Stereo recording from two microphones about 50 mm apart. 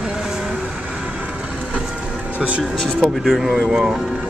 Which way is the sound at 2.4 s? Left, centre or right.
Right.